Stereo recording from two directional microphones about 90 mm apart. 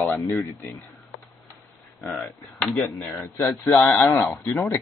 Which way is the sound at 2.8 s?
30° left (ahead or behind).